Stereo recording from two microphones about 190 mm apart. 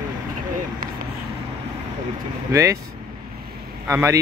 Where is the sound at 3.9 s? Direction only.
10° right (ahead or behind).